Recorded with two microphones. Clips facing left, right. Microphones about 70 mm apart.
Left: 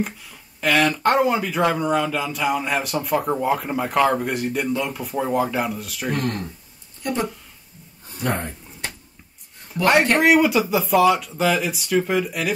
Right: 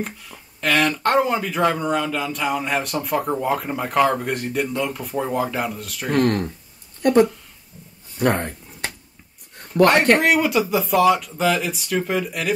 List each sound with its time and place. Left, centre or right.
0.0 s speech: centre
6.1 s speech: right
8.2 s a sound: right
10.1 s speech: centre